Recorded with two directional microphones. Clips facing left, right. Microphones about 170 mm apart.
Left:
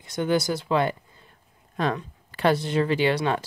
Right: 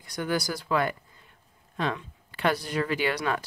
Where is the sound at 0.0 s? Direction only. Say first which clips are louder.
Left 5 dB; 25° left (ahead or behind).